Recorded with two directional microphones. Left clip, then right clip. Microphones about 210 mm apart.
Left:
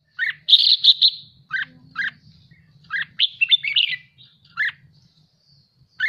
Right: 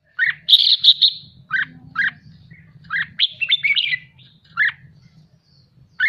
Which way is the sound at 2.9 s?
5° left (ahead or behind).